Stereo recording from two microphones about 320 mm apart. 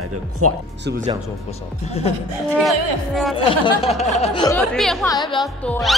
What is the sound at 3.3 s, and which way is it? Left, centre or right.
Speech, centre.